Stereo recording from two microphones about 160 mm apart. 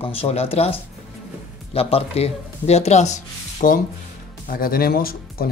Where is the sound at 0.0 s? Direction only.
40° left (ahead or behind).